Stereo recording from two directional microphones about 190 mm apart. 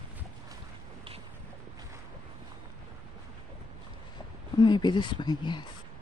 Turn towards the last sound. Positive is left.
turn(degrees=25)  # may be behind; listen again after turning